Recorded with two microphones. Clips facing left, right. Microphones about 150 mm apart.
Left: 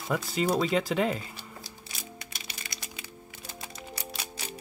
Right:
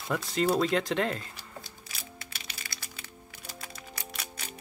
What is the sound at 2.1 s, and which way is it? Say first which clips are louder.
Music: left 1 dB; 20° left (ahead or behind).